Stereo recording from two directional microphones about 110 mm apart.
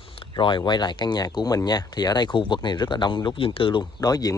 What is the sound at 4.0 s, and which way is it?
Speech, 35° left (ahead or behind).